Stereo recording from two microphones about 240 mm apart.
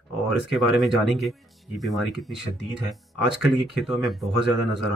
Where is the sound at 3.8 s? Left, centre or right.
Centre.